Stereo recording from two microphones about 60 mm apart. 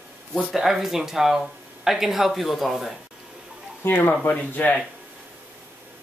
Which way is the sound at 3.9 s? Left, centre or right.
Left.